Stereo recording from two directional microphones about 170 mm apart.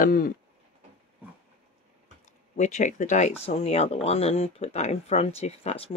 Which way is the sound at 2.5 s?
45° left (ahead or behind).